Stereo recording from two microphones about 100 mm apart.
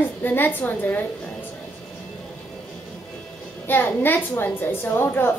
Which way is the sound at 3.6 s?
20° left (ahead or behind).